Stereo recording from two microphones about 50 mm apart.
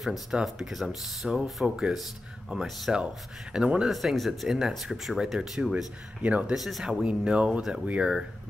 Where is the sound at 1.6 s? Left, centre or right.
Centre.